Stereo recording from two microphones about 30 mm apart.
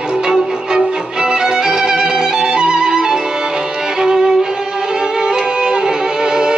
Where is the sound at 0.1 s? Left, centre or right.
Right.